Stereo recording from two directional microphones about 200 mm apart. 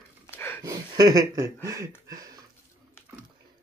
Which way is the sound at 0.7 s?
15° right (ahead or behind).